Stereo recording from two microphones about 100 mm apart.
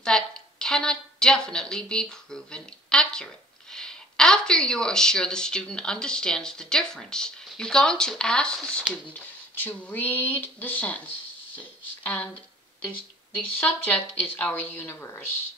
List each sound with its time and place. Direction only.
0.0 s a woman's voice: 5° left (ahead or behind)
13.6 s speech: 15° left (ahead or behind)